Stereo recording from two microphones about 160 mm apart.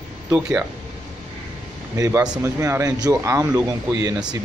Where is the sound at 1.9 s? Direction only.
20° right (ahead or behind).